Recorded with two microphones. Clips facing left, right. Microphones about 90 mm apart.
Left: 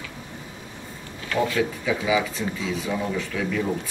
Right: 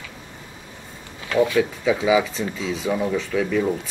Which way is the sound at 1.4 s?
25° right (ahead or behind).